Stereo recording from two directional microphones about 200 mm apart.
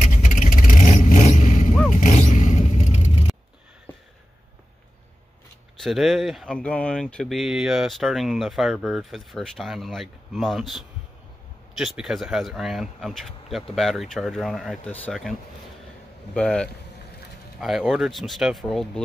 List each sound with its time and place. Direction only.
0.0 s vehicle: 40° left (ahead or behind)
5.8 s speech: centre (ahead or behind)
16.3 s speech: 5° left (ahead or behind)